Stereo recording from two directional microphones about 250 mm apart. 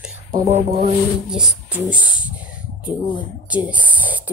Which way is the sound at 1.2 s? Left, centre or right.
Centre.